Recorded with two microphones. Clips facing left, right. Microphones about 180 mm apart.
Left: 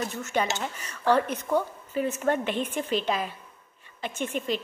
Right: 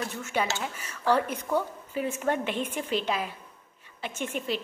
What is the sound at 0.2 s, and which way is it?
Speech, 10° right (ahead or behind).